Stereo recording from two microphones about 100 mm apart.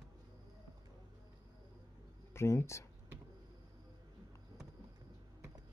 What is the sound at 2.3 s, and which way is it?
Speech, 25° left (ahead or behind).